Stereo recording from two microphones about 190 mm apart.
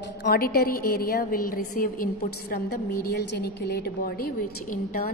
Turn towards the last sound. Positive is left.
turn(degrees=50)  # may be behind; listen again after turning